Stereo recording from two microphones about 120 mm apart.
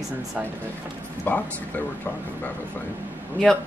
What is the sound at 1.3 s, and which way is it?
Speech, 15° left (ahead or behind).